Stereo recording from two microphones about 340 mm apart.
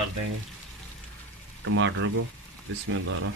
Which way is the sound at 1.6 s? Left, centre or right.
Right.